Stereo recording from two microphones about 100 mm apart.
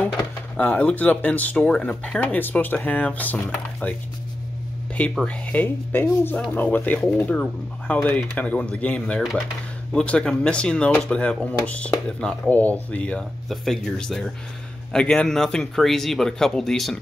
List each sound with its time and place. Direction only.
0.6 s speech: 15° left (ahead or behind)
5.2 s speech: 15° left (ahead or behind)